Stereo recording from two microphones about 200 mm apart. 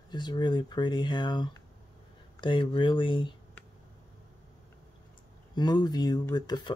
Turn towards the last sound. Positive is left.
turn(degrees=20)  # may be behind; listen again after turning